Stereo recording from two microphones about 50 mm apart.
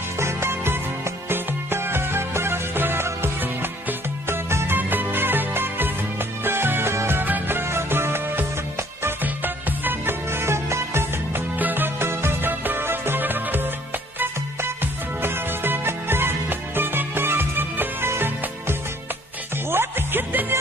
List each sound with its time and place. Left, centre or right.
0.2 s music: right
1.3 s music: right
4.3 s music: right
4.7 s music: right
7.2 s music: right
9.2 s music: right
11.5 s music: right
12.4 s music: right
15.2 s music: right